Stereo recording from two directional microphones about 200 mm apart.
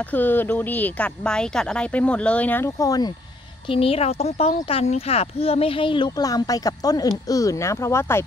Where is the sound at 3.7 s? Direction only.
30° left (ahead or behind); by 8.2 s 15° left (ahead or behind).